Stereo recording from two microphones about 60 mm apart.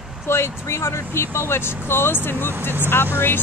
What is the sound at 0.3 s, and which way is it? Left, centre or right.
Speech, left.